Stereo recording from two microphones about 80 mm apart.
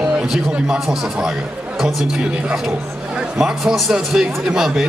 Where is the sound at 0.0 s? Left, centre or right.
Centre.